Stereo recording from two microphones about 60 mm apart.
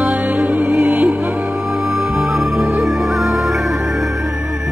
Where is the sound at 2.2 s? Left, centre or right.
Centre.